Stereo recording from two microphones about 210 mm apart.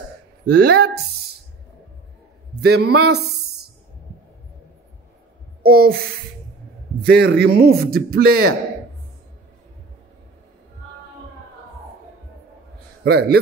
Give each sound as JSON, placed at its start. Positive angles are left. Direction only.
{"t": 0.5, "sound": "a man's voice", "side_deg": -50}
{"t": 2.6, "sound": "a man's voice", "side_deg": -50}
{"t": 5.6, "sound": "speech", "side_deg": -45}
{"t": 7.0, "sound": "a man's voice", "side_deg": -50}
{"t": 13.0, "sound": "a man's voice", "side_deg": -50}